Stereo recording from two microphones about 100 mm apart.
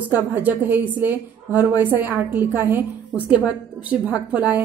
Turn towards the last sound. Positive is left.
turn(degrees=-15)  # may be behind; listen again after turning